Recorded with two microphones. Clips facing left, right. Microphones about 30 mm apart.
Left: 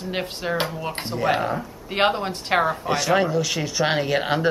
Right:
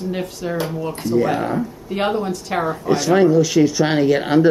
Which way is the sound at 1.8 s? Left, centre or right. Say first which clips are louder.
Left 1 dB; left.